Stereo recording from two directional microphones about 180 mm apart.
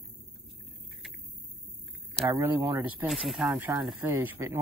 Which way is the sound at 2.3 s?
20° right (ahead or behind).